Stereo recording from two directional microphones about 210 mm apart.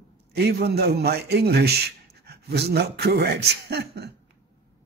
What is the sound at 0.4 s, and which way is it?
Speech, 50° right (ahead or behind).